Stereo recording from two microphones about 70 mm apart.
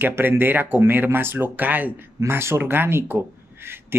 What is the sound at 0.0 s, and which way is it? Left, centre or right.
Speech, right.